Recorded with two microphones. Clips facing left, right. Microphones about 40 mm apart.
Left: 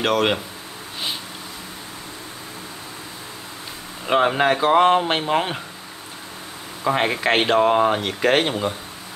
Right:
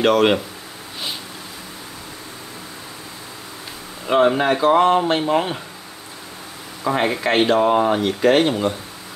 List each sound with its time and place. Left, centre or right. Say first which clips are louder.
0.0 s speech: right 4 dB; centre
4.1 s speech: right 2 dB; centre
4.6 s speech: even; left
6.8 s speech: even; centre